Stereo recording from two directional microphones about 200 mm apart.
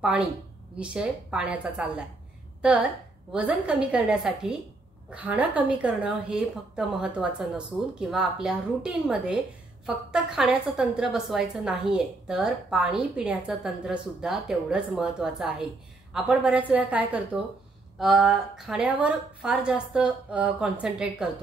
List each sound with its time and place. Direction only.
0.0 s a woman's voice: 5° right (ahead or behind)